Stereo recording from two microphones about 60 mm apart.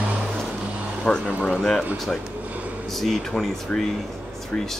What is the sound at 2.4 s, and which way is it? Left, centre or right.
Air conditioning, right.